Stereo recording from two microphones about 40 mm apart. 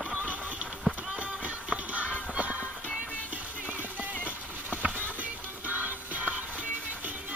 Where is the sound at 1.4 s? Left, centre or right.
Right.